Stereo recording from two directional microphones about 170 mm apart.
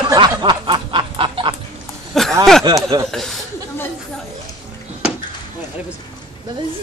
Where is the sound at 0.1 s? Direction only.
25° right (ahead or behind).